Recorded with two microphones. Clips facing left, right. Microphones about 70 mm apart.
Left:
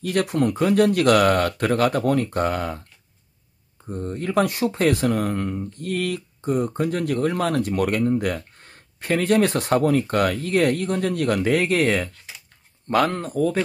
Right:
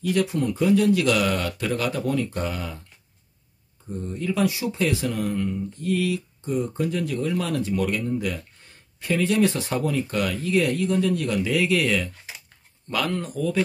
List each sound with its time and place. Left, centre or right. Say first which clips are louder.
0.0 s speech: left 2 dB; left
3.9 s speech: left 4 dB; left